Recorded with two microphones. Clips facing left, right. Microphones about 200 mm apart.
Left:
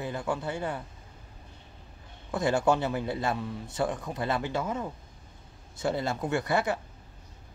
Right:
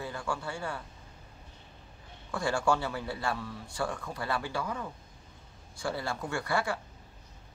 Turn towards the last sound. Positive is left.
turn(degrees=20)  # may be behind; listen again after turning